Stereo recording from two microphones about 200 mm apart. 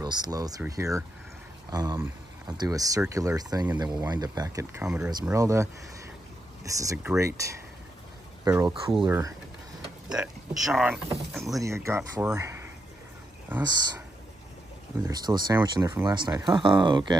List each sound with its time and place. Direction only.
0.0 s speech: 20° right (ahead or behind); by 11.6 s centre (ahead or behind)
11.6 s speech: 15° right (ahead or behind)
15.0 s speech: 20° right (ahead or behind)